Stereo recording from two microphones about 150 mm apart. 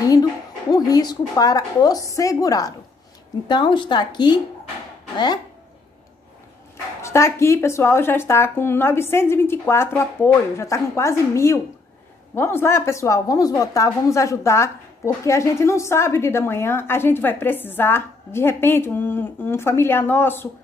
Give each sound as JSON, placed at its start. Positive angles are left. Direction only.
{"t": 0.1, "sound": "a woman's voice", "side_deg": 25}
{"t": 7.0, "sound": "a woman's voice", "side_deg": 20}